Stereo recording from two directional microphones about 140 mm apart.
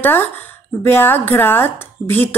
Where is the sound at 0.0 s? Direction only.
15° left (ahead or behind).